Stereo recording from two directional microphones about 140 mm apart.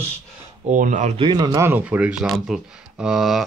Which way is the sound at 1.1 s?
30° right (ahead or behind).